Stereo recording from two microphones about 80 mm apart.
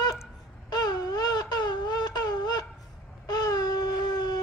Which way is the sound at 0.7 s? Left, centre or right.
Left.